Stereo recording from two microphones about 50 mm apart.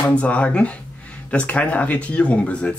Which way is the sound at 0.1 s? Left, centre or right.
Left.